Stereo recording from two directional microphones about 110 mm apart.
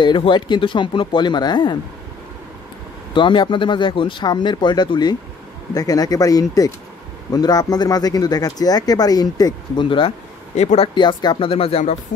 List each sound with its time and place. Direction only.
0.0 s speech: 45° left (ahead or behind)
3.2 s speech: 50° left (ahead or behind)
10.5 s speech: 85° left
11.0 s speech: 45° left (ahead or behind)
11.3 s speech: 60° left (ahead or behind); by 12.0 s 75° left (ahead or behind)